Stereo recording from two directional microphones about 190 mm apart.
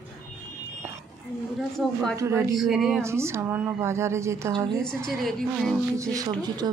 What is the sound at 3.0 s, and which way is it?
Speech, 15° right (ahead or behind).